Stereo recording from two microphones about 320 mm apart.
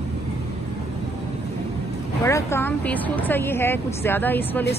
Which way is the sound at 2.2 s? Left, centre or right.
Centre.